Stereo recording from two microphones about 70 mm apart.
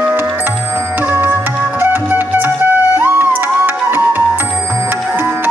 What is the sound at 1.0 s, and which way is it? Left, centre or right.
Music, right.